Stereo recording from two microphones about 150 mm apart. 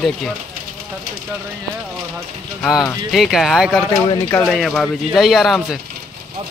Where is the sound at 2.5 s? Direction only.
Centre (ahead or behind).